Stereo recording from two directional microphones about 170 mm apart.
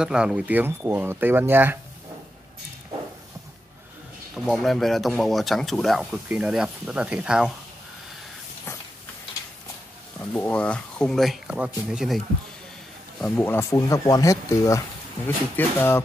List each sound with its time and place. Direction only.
0.0 s speech: 5° right (ahead or behind)
4.5 s speech: centre (ahead or behind)
10.1 s speech: 10° left (ahead or behind)
13.2 s speech: 10° left (ahead or behind)